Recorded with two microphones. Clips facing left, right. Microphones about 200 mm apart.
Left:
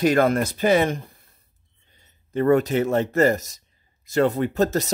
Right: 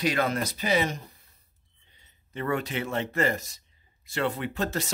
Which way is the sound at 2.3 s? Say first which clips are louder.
Left 11 dB; 45° left (ahead or behind).